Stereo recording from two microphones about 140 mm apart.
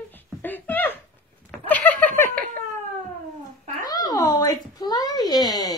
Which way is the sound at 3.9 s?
30° left (ahead or behind).